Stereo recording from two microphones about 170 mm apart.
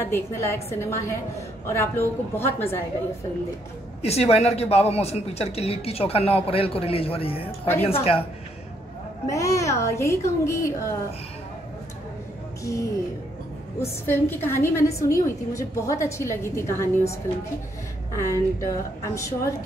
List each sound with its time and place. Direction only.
0.0 s a woman's voice: 15° left (ahead or behind)
4.0 s speech: 40° left (ahead or behind)
9.3 s a woman's voice: 20° left (ahead or behind)
13.7 s a woman's voice: 15° left (ahead or behind)